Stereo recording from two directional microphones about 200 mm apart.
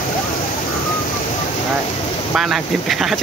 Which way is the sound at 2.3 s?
Centre (ahead or behind).